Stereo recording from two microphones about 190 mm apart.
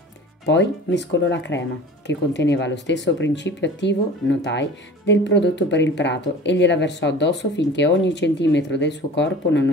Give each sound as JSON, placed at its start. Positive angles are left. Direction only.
{"t": 0.5, "sound": "speech", "side_deg": 65}